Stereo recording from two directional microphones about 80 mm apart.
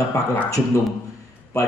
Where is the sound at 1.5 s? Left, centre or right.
Left.